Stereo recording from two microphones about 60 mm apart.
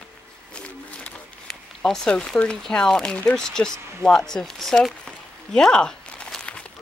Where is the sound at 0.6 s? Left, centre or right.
Left.